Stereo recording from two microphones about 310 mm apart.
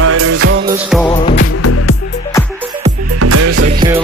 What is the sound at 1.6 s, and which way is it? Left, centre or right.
Music, left.